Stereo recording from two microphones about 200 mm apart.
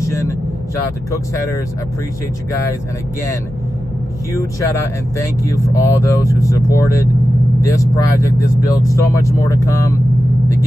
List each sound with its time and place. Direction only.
0.0 s vehicle: 15° left (ahead or behind)
4.3 s speech: 15° left (ahead or behind)